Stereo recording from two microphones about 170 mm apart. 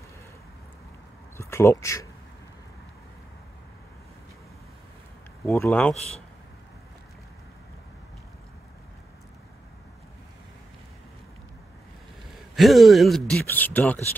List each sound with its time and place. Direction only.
1.4 s speech: 15° left (ahead or behind)
5.4 s speech: 15° left (ahead or behind)
12.5 s speech: centre (ahead or behind)
13.5 s speech: 10° left (ahead or behind)